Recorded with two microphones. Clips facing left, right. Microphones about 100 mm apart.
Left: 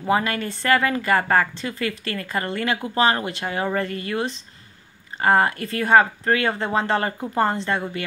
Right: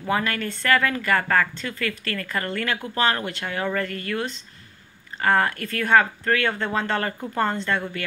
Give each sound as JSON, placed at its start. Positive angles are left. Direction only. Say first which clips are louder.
{"t": 0.0, "sound": "speech", "louder": "left 3 dB", "side_deg": 15}